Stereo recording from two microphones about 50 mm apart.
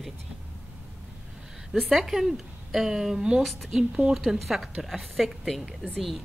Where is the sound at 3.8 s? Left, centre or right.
Centre.